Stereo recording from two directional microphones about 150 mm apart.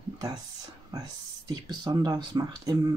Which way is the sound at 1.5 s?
25° right (ahead or behind).